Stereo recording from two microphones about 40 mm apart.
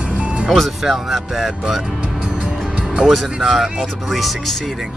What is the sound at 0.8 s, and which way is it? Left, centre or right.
Speech, centre.